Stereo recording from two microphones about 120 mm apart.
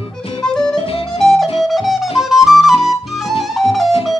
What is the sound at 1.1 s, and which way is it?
Music, 5° left (ahead or behind).